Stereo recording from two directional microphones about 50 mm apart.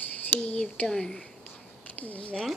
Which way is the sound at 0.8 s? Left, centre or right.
Centre.